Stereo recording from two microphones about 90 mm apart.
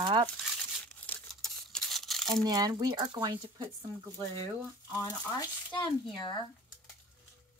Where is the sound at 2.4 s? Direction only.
50° right (ahead or behind).